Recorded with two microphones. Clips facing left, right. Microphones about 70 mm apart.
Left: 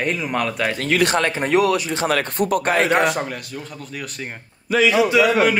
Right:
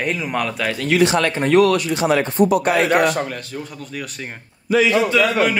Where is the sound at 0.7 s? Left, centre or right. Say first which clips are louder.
Right 4 dB; left.